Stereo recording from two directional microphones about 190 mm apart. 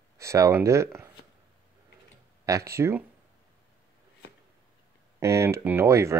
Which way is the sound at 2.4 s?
15° right (ahead or behind).